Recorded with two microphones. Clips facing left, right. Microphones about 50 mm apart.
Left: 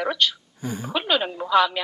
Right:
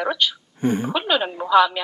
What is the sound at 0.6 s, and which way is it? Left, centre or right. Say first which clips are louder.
Speech: right 10 dB; right.